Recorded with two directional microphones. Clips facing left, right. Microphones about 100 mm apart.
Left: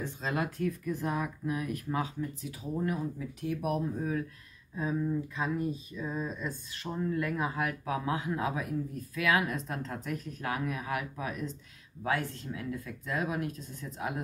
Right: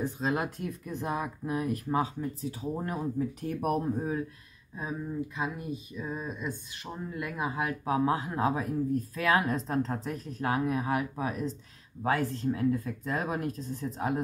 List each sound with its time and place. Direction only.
0.2 s speech: 20° right (ahead or behind); by 3.9 s 45° right (ahead or behind)
4.0 s speech: 25° right (ahead or behind)
4.7 s speech: 15° right (ahead or behind); by 14.2 s 35° right (ahead or behind)